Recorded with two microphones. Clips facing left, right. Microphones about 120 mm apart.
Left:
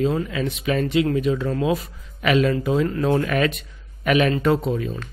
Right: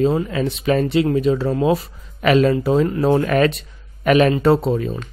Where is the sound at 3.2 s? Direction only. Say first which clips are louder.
Right 5 dB; 40° right (ahead or behind).